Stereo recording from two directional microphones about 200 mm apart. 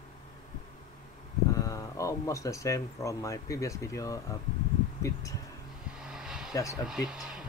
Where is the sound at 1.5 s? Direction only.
15° left (ahead or behind).